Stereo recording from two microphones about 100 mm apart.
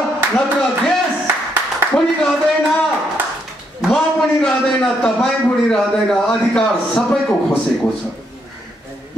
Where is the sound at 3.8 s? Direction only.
5° left (ahead or behind).